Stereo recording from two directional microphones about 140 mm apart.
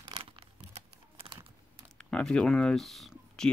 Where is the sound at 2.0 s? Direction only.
5° left (ahead or behind).